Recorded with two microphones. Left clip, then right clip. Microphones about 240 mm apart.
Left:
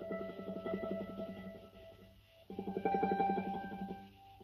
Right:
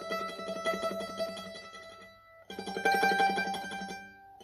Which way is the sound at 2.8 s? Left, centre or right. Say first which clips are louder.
Right 8 dB; centre.